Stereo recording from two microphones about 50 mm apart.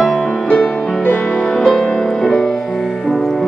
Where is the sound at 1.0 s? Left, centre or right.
Left.